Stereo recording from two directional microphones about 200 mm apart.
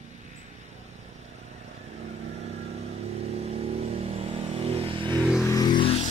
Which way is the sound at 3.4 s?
30° right (ahead or behind).